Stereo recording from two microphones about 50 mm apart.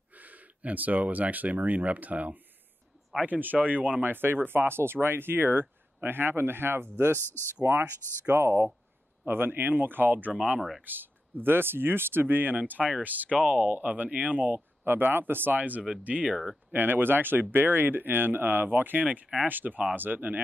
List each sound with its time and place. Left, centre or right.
0.1 s speech: right
4.0 s speech: right
7.2 s speech: left
7.6 s speech: right
9.2 s speech: right
12.5 s speech: right
15.1 s speech: right
16.7 s speech: right